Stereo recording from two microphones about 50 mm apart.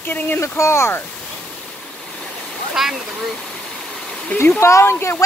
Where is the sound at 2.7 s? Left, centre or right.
Centre.